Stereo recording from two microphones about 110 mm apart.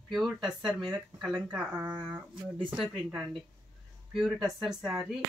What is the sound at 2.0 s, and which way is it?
Speech, 10° right (ahead or behind).